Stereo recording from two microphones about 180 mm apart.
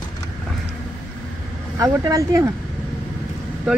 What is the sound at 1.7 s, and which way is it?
Speech, 20° right (ahead or behind).